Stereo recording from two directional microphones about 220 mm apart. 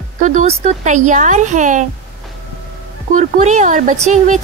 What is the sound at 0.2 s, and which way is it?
Speech, 35° right (ahead or behind).